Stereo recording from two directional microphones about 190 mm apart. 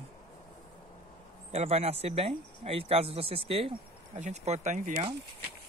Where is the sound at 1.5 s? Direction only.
35° right (ahead or behind).